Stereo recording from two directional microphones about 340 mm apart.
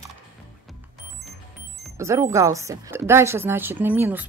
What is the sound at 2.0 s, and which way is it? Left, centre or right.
Speech, centre.